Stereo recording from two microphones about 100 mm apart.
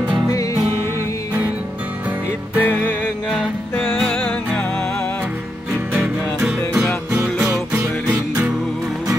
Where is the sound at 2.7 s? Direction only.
15° left (ahead or behind).